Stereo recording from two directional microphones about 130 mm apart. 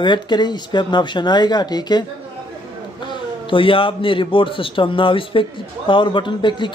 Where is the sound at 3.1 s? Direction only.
40° left (ahead or behind).